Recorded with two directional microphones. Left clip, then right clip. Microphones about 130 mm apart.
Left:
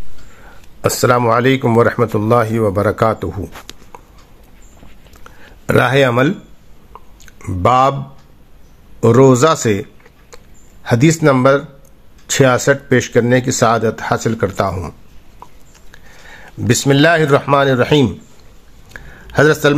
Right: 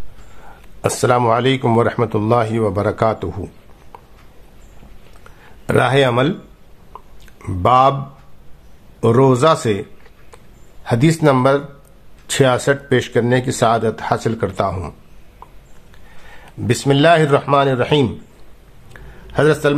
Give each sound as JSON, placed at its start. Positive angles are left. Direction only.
{"t": 0.8, "sound": "speech", "side_deg": 15}
{"t": 5.7, "sound": "speech", "side_deg": 15}
{"t": 6.9, "sound": "whispering", "side_deg": 0}
{"t": 7.2, "sound": "a sound", "side_deg": 5}
{"t": 7.6, "sound": "a man's voice", "side_deg": 20}
{"t": 9.0, "sound": "a man's voice", "side_deg": 25}
{"t": 10.3, "sound": "a sound", "side_deg": 20}
{"t": 11.1, "sound": "speech", "side_deg": 5}
{"t": 12.3, "sound": "speech", "side_deg": 15}
{"t": 18.9, "sound": "a sound", "side_deg": 30}